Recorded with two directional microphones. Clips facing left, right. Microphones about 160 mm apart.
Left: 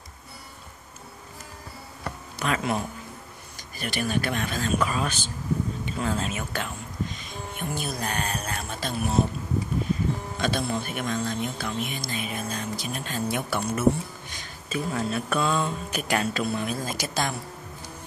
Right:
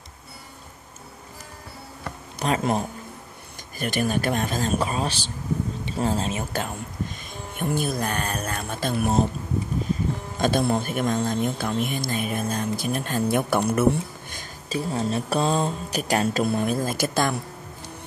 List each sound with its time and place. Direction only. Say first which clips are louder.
2.4 s speech: right 3 dB; 35° right (ahead or behind)
10.4 s speech: right 6 dB; 50° right (ahead or behind)
14.7 s speech: right 2 dB; 30° right (ahead or behind); by 17.4 s 55° right (ahead or behind)